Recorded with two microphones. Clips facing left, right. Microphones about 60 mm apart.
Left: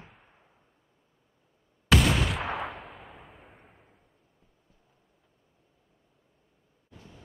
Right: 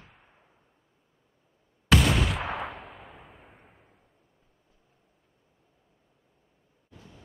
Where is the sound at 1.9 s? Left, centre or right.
Centre.